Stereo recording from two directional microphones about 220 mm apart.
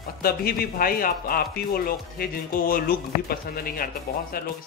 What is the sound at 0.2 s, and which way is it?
A man's voice, 45° left (ahead or behind).